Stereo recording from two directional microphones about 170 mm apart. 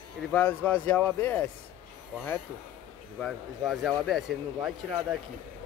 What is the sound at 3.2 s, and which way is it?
Speech, centre (ahead or behind).